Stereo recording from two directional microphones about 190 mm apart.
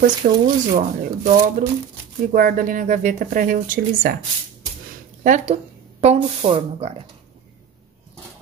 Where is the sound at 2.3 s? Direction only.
45° right (ahead or behind).